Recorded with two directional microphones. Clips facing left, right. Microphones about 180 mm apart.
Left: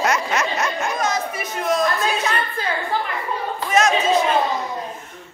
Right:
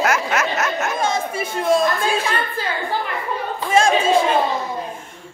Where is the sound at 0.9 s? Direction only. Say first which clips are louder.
Right 2 dB; 25° right (ahead or behind).